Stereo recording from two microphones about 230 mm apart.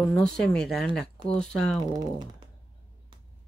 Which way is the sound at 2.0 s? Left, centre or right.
Centre.